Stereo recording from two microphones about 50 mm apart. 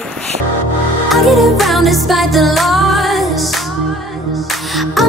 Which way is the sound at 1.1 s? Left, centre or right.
Centre.